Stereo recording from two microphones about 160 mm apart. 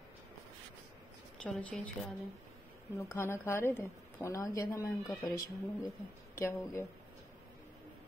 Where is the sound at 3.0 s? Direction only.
15° left (ahead or behind).